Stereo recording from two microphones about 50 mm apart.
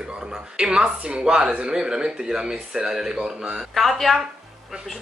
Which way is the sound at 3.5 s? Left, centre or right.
Centre.